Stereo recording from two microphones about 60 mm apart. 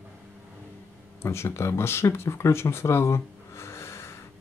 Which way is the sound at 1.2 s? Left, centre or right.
Left.